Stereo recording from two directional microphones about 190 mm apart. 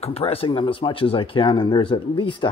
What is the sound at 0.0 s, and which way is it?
Speech, 30° left (ahead or behind).